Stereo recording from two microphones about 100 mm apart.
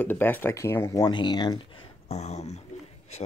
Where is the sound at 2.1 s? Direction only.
90° left.